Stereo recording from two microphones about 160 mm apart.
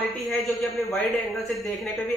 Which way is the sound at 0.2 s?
Centre (ahead or behind).